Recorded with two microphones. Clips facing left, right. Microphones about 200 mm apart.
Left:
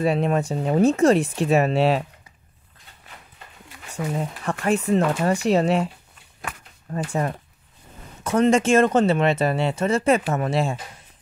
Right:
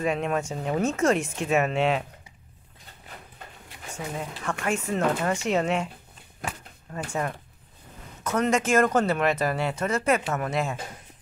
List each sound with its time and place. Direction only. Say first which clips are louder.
0.0 s speech: left 5 dB; 35° left (ahead or behind)
3.9 s speech: left 6 dB; 35° left (ahead or behind)
6.9 s speech: left 5 dB; 30° left (ahead or behind)